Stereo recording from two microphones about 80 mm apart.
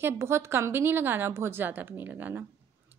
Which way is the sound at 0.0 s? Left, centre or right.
Right.